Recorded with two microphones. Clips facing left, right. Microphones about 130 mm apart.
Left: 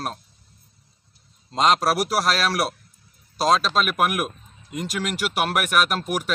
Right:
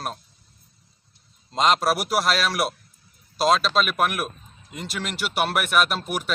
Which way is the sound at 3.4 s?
40° left (ahead or behind).